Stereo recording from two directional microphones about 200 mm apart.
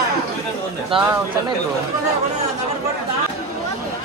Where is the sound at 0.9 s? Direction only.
25° right (ahead or behind).